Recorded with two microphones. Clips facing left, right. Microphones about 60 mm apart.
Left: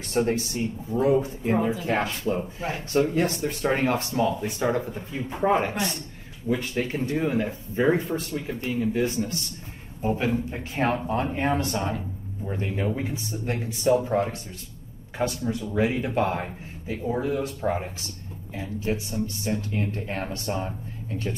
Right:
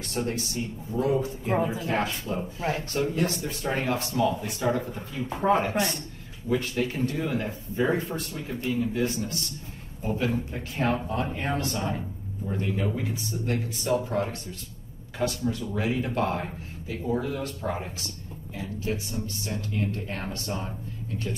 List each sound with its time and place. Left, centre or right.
0.2 s speech: left
6.7 s speech: left